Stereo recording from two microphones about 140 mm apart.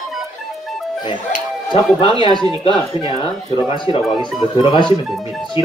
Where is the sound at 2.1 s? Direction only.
30° right (ahead or behind).